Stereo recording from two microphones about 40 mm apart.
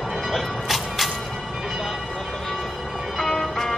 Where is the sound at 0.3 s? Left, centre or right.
Centre.